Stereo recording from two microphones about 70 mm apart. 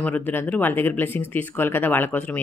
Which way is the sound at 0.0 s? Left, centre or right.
Left.